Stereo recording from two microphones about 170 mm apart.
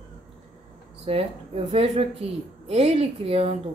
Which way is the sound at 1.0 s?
35° right (ahead or behind).